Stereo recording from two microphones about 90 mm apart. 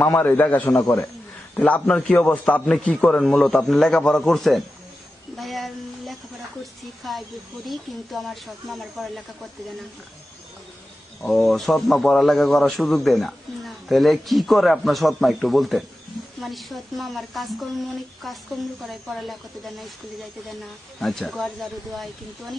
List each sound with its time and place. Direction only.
0.0 s a man's voice: 20° left (ahead or behind)
0.7 s a man's voice: 35° left (ahead or behind)
1.7 s a man's voice: 10° left (ahead or behind)
11.2 s a man's voice: 5° left (ahead or behind)
21.0 s a man's voice: 5° left (ahead or behind)